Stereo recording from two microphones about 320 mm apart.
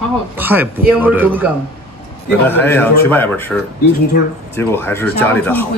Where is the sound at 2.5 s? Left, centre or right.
Centre.